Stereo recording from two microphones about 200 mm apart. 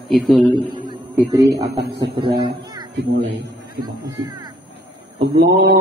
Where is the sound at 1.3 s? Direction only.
20° right (ahead or behind).